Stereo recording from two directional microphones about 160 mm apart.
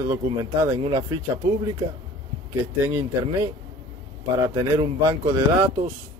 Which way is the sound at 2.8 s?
15° right (ahead or behind).